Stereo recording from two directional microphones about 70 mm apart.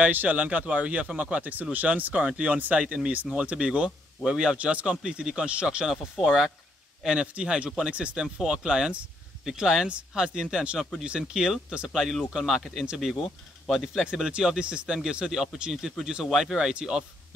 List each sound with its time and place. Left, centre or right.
0.0 s speech: right
5.9 s speech: centre